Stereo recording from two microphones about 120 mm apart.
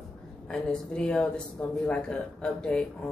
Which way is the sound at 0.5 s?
10° left (ahead or behind).